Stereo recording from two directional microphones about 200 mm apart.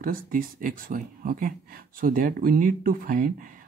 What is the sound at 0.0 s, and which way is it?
Speech, 45° right (ahead or behind).